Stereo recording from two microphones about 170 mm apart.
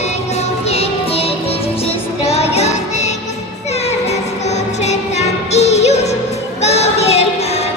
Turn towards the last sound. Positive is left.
turn(degrees=40)  # may be behind; listen again after turning